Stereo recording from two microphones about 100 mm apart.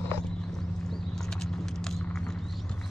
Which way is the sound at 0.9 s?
5° left (ahead or behind).